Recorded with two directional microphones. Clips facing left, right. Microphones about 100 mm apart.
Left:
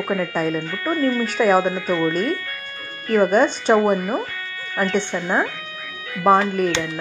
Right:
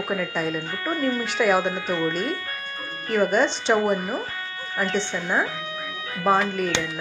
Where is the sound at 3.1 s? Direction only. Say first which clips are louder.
Left 5 dB; 45° left (ahead or behind).